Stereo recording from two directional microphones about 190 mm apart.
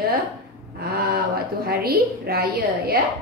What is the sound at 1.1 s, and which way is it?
A woman's voice, 55° right (ahead or behind).